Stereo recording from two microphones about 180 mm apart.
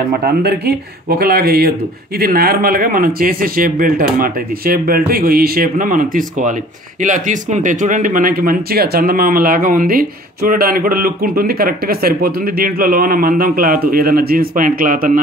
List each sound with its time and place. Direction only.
0.2 s speech: 60° right (ahead or behind)